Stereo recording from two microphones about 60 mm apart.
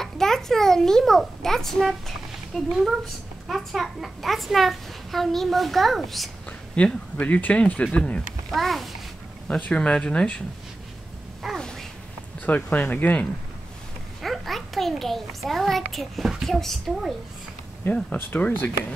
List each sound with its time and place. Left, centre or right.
0.0 s a child's voice: centre
6.8 s speech: centre
8.5 s a child's voice: centre
9.5 s speech: centre
11.5 s a sound: centre
12.4 s speech: left
14.2 s a child's voice: centre
18.1 s speech: left